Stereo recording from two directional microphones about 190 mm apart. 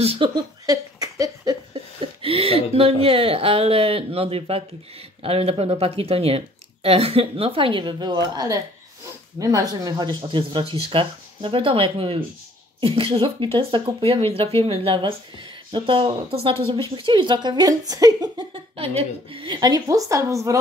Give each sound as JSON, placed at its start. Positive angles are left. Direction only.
{"t": 0.0, "sound": "speech", "side_deg": -30}
{"t": 0.7, "sound": "a sound", "side_deg": -20}
{"t": 5.2, "sound": "speech", "side_deg": -30}